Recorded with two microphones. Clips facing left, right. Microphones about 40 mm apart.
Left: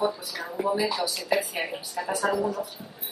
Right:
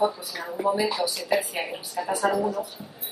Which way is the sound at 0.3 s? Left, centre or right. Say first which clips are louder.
Right 3 dB; centre.